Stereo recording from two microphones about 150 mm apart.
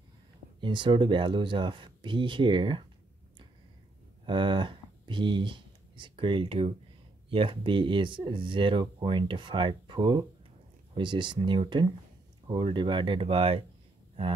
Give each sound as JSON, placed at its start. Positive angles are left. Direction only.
{"t": 0.6, "sound": "speech", "side_deg": -30}
{"t": 4.3, "sound": "speech", "side_deg": -30}